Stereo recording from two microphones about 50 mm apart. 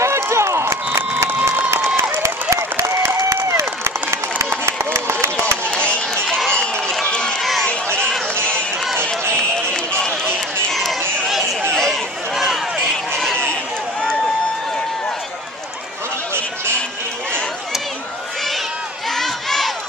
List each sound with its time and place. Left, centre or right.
0.0 s run: right
2.0 s a sound: right
4.6 s a sound: right
6.2 s run: centre
6.5 s run: centre
8.5 s run: right
10.7 s chatter: centre
11.7 s a sound: centre
19.1 s crowd: centre